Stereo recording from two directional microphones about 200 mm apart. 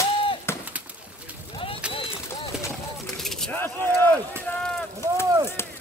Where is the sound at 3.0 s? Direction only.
Centre (ahead or behind).